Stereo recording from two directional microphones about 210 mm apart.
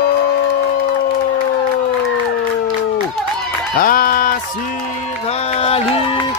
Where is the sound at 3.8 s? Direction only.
45° left (ahead or behind).